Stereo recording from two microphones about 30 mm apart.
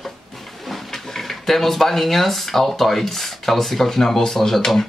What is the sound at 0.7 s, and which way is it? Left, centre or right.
Speech, centre.